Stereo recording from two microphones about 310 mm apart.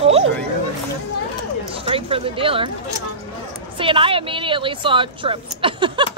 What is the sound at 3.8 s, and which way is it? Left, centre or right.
A woman's voice, centre.